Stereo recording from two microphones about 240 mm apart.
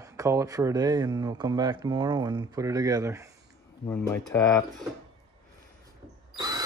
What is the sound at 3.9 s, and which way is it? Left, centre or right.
Speech, centre.